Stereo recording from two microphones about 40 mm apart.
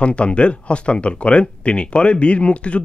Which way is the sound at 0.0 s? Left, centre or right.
Left.